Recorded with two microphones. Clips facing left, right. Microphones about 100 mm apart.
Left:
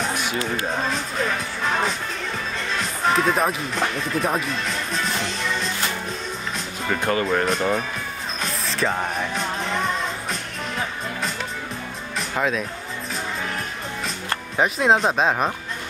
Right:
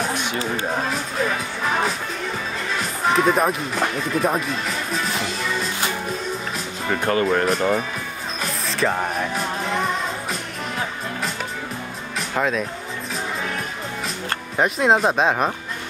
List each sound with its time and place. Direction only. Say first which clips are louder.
0.8 s speech: right 1 dB; 5° right (ahead or behind)
7.1 s speech: right 3 dB; 5° left (ahead or behind)
8.4 s music: right 2 dB; centre (ahead or behind)
12.2 s music: right 1 dB; centre (ahead or behind)
14.6 s speech: right 1 dB; centre (ahead or behind)